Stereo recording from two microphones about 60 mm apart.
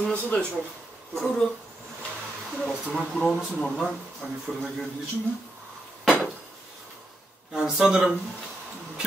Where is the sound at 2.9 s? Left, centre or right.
Centre.